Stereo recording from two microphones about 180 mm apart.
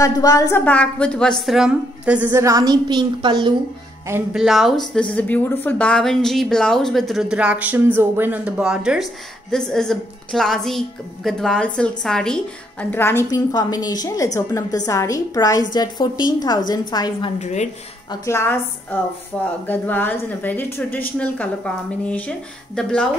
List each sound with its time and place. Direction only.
0.0 s speech: 20° left (ahead or behind); by 3.5 s 25° right (ahead or behind)
4.1 s a woman's voice: 5° right (ahead or behind); by 17.3 s 25° left (ahead or behind)
17.4 s speech: 40° left (ahead or behind)
18.2 s speech: 15° left (ahead or behind)